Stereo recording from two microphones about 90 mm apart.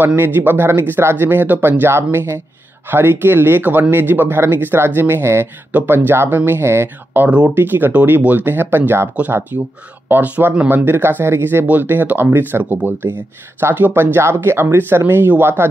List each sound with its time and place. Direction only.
0.0 s speech: 25° right (ahead or behind)
7.2 s speech: 15° right (ahead or behind); by 9.7 s 30° right (ahead or behind)
10.0 s speech: 20° right (ahead or behind)